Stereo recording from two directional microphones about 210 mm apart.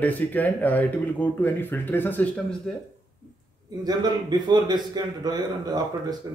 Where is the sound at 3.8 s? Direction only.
20° right (ahead or behind).